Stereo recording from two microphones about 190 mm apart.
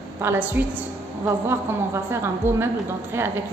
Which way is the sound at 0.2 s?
10° right (ahead or behind).